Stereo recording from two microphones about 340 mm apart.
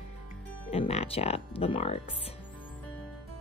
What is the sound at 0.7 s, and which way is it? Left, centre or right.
Speech, centre.